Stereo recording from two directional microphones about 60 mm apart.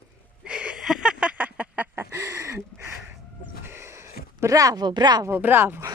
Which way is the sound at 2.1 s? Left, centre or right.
Right.